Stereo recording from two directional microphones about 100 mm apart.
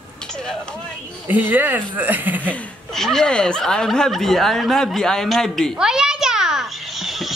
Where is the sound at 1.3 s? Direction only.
20° right (ahead or behind).